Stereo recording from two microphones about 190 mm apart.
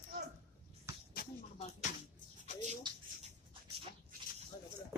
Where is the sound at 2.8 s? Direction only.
25° right (ahead or behind).